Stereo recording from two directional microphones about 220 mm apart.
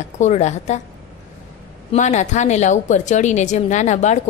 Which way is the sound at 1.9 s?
35° left (ahead or behind).